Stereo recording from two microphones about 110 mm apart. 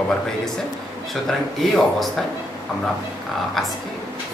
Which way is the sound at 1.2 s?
Centre (ahead or behind).